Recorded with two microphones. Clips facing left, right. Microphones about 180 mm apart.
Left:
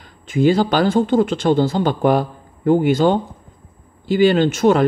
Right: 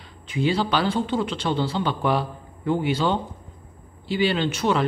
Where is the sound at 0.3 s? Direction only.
45° left (ahead or behind).